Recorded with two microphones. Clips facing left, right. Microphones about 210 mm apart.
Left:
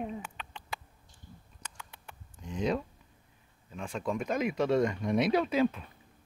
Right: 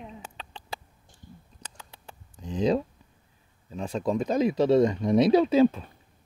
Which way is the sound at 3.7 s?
35° right (ahead or behind).